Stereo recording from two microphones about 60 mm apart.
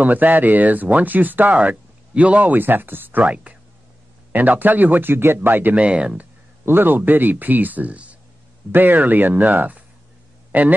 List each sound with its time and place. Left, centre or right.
0.0 s speech: right
5.9 s speech: centre
6.6 s speech: right